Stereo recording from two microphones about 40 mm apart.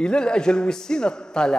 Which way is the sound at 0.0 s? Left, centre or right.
Left.